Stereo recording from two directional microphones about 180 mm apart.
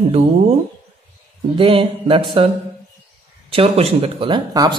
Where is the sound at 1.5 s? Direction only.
30° right (ahead or behind).